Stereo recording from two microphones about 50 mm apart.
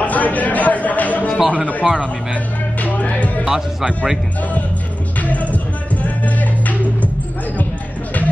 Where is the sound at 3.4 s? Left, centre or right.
Centre.